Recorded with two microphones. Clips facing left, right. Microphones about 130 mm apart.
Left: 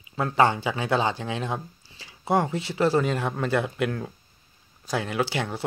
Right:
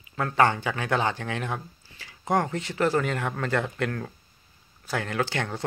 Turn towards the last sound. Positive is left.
turn(degrees=10)  # may be behind; listen again after turning